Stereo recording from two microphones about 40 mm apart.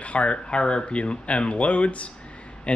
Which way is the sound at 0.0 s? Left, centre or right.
Left.